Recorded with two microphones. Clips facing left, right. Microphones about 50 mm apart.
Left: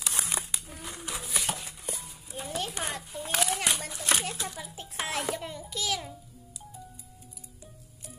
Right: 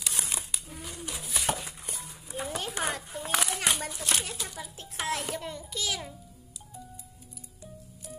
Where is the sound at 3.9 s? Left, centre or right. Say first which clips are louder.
Left 2 dB; left.